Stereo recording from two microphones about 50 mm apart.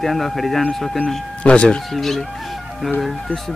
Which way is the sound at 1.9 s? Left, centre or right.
Centre.